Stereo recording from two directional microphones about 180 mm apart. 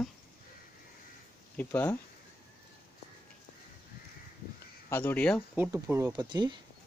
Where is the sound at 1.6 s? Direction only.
10° left (ahead or behind).